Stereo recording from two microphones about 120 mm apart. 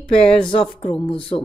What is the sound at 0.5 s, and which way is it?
Speech, 50° left (ahead or behind).